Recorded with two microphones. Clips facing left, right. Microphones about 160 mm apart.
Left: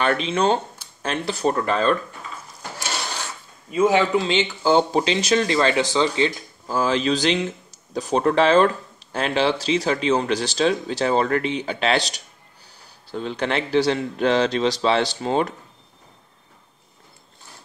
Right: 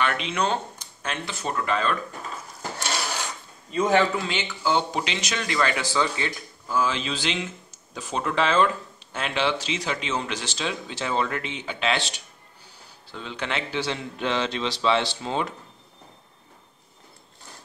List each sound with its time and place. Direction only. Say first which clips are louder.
0.0 s speech: left 5 dB; 30° left (ahead or behind)
3.7 s a man's voice: left 3 dB; 5° left (ahead or behind)
4.1 s speech: left 8 dB; 25° left (ahead or behind)
6.8 s speech: left 7 dB; 40° left (ahead or behind)